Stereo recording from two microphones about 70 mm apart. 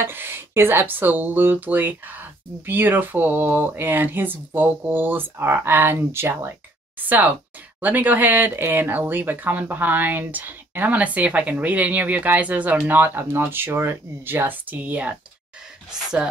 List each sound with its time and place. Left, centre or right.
0.0 s speech: right
7.8 s speech: right